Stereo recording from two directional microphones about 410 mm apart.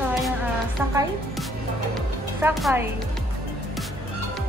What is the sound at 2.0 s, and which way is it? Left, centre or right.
Music, centre.